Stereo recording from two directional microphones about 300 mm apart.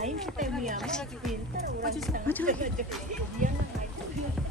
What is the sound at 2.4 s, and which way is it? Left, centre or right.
Music, right.